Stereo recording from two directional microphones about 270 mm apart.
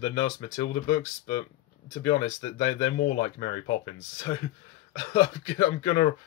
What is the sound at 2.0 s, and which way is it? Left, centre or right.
Speech, centre.